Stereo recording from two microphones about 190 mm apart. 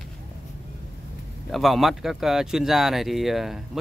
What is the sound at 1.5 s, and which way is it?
Speech, centre (ahead or behind).